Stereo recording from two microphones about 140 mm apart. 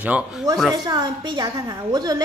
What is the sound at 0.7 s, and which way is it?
A woman's voice, 30° right (ahead or behind).